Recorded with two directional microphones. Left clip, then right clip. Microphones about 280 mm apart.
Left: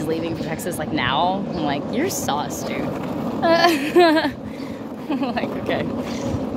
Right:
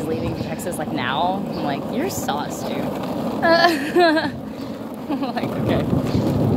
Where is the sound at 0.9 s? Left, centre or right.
Centre.